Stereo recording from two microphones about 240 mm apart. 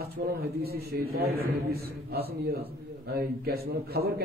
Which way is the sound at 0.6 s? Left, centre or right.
Right.